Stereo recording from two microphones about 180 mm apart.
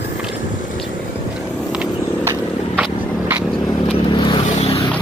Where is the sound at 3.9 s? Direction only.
25° left (ahead or behind).